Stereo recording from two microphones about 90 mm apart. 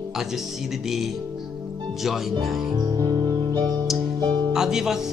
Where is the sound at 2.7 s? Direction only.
50° right (ahead or behind).